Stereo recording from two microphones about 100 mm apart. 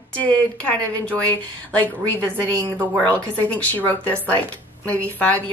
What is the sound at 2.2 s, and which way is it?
Speech, 15° left (ahead or behind).